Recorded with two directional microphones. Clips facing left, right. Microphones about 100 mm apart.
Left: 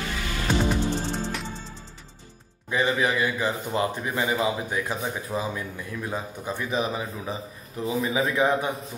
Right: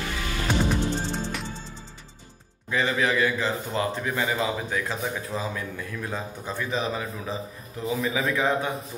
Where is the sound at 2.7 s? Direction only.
15° left (ahead or behind).